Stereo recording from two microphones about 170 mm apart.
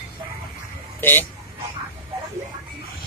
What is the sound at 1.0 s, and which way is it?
Speech, 10° left (ahead or behind).